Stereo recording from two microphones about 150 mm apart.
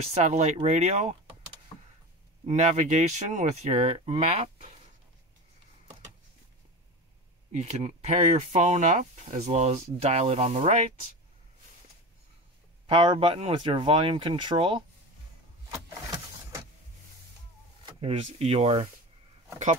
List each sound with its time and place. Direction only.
0.1 s speech: 50° right (ahead or behind)
2.4 s speech: 50° right (ahead or behind)
7.5 s speech: 50° right (ahead or behind)
12.8 s speech: 35° right (ahead or behind)
15.7 s vehicle: 20° right (ahead or behind)
18.0 s speech: 40° right (ahead or behind)